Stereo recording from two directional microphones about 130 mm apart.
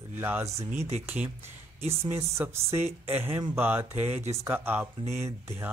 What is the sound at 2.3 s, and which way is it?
A woman's voice, 20° right (ahead or behind).